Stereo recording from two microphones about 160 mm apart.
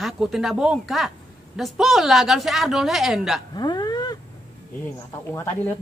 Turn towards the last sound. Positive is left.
turn(degrees=15)  # may be behind; listen again after turning